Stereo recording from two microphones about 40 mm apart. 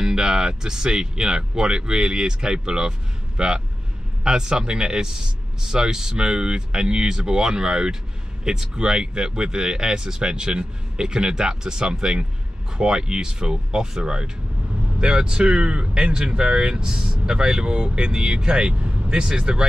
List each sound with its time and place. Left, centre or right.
0.0 s speech: centre